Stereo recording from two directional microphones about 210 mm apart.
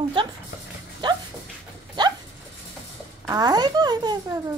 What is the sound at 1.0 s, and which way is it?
Dog, 20° right (ahead or behind).